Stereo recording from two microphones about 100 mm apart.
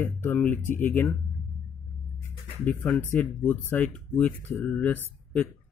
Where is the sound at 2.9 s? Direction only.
15° left (ahead or behind).